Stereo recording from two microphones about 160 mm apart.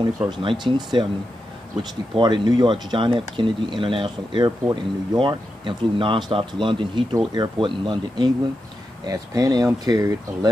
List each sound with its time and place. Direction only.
0.3 s speech: 30° right (ahead or behind)